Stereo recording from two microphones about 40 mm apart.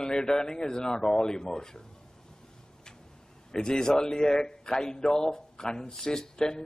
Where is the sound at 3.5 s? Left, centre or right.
Centre.